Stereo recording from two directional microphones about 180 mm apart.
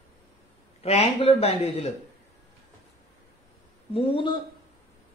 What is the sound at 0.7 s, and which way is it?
Speech, 35° left (ahead or behind).